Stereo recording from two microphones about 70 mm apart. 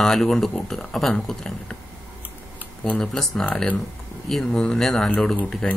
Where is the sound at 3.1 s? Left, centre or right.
Centre.